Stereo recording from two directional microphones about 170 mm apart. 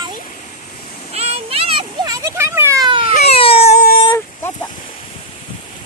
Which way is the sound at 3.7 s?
60° left (ahead or behind).